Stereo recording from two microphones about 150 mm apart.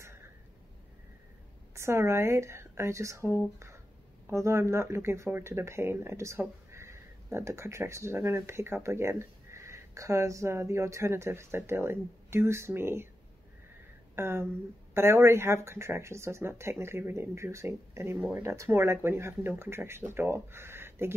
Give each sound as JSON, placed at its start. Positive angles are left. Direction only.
{"t": 1.8, "sound": "speech", "side_deg": -20}
{"t": 3.5, "sound": "a sound", "side_deg": -20}
{"t": 4.3, "sound": "speech", "side_deg": -20}
{"t": 14.1, "sound": "speech", "side_deg": -15}